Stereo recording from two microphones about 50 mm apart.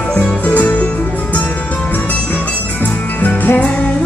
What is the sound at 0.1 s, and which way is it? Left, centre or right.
Music, left.